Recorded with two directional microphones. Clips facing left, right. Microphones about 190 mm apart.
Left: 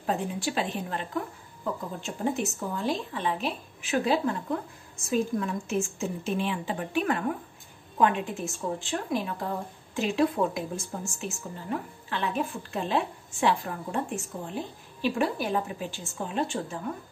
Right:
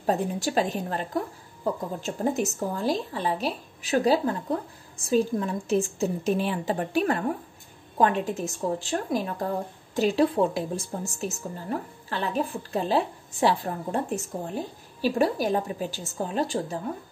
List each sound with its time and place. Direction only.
0.0 s a woman's voice: 40° right (ahead or behind)